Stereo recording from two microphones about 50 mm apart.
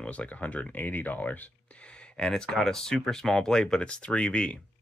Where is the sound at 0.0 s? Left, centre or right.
Left.